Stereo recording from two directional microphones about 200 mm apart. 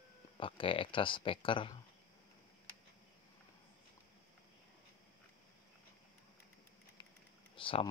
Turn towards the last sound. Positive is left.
turn(degrees=25)  # may be behind; listen again after turning